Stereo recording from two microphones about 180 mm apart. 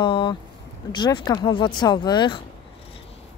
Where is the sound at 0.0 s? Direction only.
25° left (ahead or behind).